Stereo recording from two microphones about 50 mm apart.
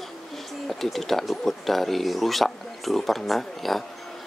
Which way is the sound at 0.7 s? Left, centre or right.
Centre.